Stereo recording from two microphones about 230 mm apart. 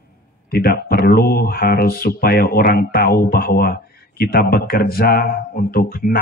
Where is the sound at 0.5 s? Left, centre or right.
Left.